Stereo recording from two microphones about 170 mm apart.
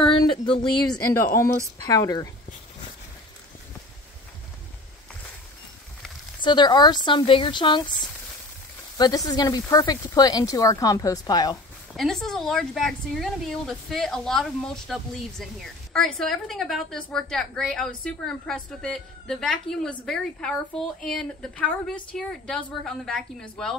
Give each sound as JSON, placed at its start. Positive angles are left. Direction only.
{"t": 0.0, "sound": "a sound", "side_deg": 30}
{"t": 1.1, "sound": "speech", "side_deg": 15}
{"t": 6.4, "sound": "speech", "side_deg": 25}
{"t": 11.9, "sound": "speech", "side_deg": 0}